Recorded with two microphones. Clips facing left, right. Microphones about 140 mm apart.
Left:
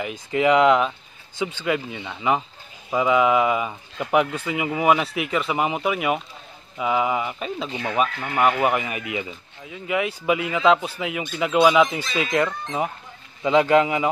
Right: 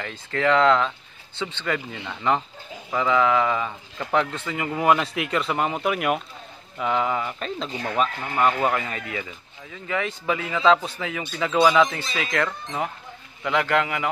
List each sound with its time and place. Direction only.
0.0 s a man's voice: 15° left (ahead or behind)